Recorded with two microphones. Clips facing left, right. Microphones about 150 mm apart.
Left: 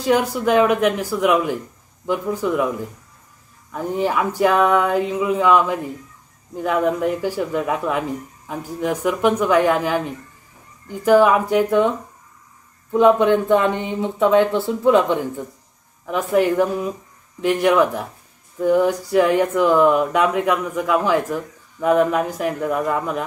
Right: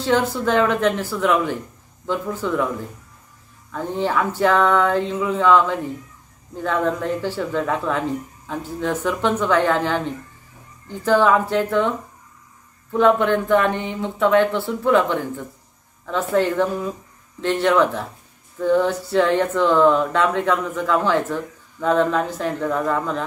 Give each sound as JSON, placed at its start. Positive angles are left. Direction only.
{"t": 0.0, "sound": "speech", "side_deg": 15}
{"t": 3.7, "sound": "speech", "side_deg": 10}
{"t": 12.9, "sound": "speech", "side_deg": 15}